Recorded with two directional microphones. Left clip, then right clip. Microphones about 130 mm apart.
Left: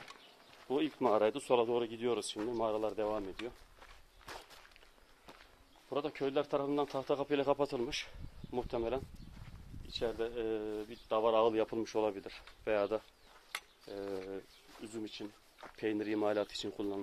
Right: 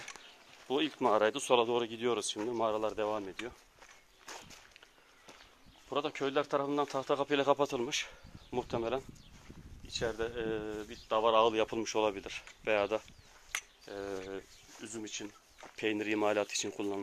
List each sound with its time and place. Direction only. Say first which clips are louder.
0.7 s speech: right 2 dB; 10° right (ahead or behind)
1.5 s speech: right 2 dB; 25° right (ahead or behind)
4.3 s walk: right 1 dB; 15° right (ahead or behind)
5.9 s speech: right 2 dB; 20° right (ahead or behind)
13.5 s a sound: right 5 dB; 10° right (ahead or behind)
13.9 s speech: right 1 dB; 20° right (ahead or behind)